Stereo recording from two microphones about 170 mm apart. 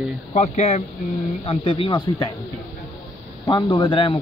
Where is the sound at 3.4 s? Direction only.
25° left (ahead or behind).